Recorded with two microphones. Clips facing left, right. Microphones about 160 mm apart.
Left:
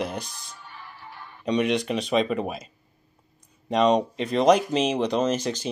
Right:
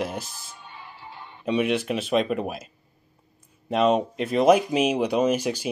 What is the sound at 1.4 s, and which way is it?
Speech, 5° right (ahead or behind).